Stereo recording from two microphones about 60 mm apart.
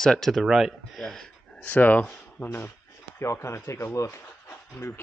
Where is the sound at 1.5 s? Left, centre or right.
Left.